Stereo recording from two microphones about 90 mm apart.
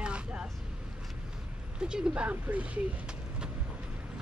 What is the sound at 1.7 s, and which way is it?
Speech, 10° right (ahead or behind).